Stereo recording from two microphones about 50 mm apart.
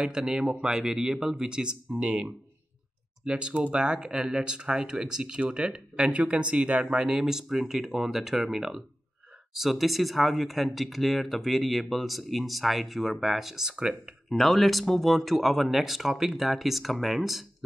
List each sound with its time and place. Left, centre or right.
0.0 s speech: centre
14.3 s speech: centre